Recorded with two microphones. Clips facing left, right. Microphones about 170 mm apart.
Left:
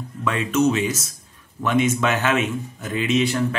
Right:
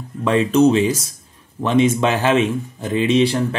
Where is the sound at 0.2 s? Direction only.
30° right (ahead or behind).